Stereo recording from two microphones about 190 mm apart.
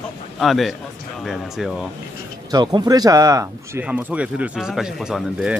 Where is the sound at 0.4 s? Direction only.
Centre (ahead or behind).